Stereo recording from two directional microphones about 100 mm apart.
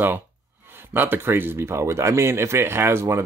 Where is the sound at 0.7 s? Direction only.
20° right (ahead or behind).